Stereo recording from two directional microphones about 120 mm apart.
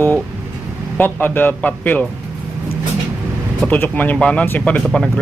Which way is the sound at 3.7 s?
15° left (ahead or behind).